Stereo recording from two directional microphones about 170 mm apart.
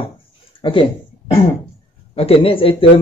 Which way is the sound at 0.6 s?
30° left (ahead or behind).